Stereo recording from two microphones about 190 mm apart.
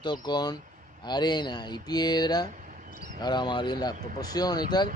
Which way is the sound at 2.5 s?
45° right (ahead or behind).